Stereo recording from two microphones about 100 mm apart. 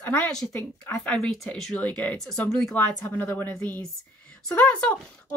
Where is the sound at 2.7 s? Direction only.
20° left (ahead or behind).